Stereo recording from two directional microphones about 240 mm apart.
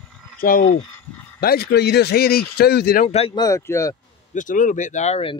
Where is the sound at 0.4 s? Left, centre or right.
Left.